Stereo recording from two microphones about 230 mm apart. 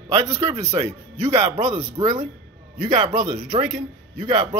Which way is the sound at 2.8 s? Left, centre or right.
Right.